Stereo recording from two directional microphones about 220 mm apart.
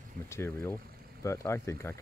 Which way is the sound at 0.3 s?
10° left (ahead or behind).